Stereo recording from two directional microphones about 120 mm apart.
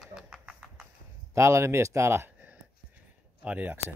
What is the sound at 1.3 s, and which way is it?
Speech, 25° right (ahead or behind).